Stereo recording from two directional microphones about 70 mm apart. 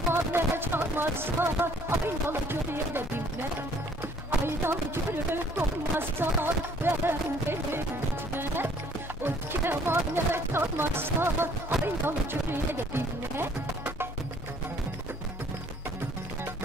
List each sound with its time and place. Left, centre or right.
0.1 s speech: right
4.5 s speech: right
8.3 s music: right
9.2 s speech: right